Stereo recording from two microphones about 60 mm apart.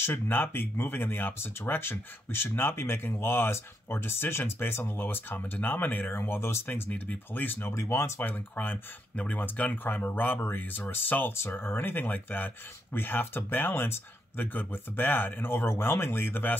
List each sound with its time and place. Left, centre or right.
0.0 s speech: left
7.7 s speech: left
8.2 s speech: left